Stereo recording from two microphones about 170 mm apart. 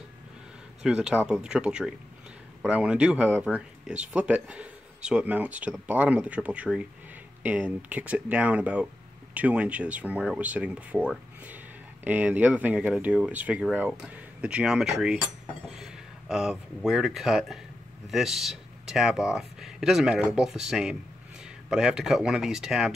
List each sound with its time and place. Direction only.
0.8 s speech: 5° right (ahead or behind)